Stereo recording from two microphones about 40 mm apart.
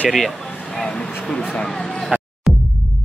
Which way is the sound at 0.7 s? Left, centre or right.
Left.